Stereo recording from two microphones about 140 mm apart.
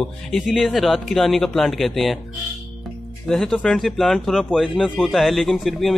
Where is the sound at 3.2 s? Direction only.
5° left (ahead or behind).